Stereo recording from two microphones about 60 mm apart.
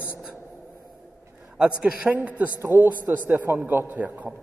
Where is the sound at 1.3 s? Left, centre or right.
Right.